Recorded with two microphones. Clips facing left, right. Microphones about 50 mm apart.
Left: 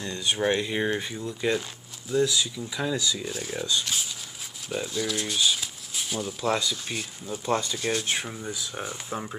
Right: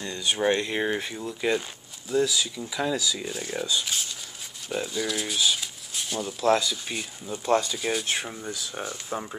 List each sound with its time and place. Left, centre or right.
0.4 s speech: centre